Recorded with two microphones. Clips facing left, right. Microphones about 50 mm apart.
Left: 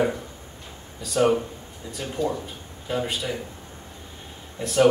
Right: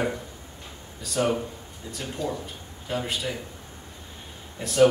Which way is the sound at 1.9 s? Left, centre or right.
Centre.